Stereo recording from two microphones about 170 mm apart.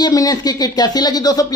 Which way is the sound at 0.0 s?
20° left (ahead or behind).